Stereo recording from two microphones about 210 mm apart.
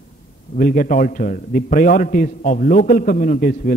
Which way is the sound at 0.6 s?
40° left (ahead or behind).